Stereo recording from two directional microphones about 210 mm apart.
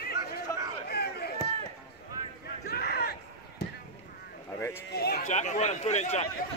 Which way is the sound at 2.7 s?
50° left (ahead or behind).